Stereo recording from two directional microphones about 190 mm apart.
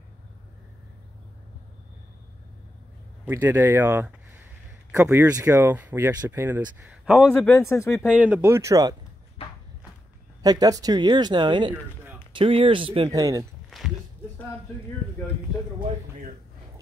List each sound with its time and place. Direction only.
3.3 s speech: 10° right (ahead or behind)
6.8 s a man's voice: 5° right (ahead or behind)
7.5 s speech: 15° left (ahead or behind)
8.1 s speech: 5° right (ahead or behind)
10.4 s speech: 20° right (ahead or behind)
13.7 s a sound: centre (ahead or behind)